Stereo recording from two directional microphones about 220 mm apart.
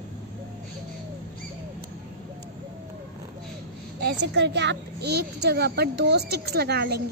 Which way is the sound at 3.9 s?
50° right (ahead or behind).